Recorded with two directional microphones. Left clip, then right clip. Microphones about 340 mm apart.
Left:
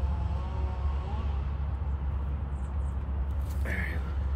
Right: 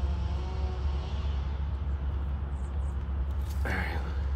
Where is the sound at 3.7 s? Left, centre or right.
Right.